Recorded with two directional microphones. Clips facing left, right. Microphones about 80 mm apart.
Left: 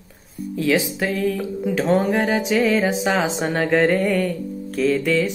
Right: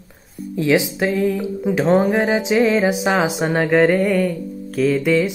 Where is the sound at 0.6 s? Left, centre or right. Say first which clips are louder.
Right 3 dB; right.